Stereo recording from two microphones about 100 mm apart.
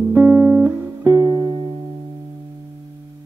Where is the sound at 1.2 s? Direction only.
40° right (ahead or behind).